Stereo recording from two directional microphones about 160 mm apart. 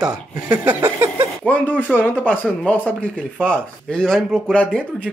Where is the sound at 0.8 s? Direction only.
20° right (ahead or behind).